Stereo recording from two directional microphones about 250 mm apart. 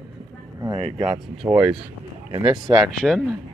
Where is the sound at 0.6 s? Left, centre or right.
Centre.